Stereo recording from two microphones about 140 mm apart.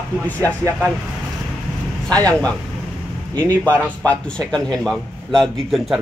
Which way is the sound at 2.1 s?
10° left (ahead or behind).